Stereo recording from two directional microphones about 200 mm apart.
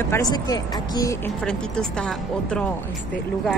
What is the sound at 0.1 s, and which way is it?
Speech, 20° left (ahead or behind).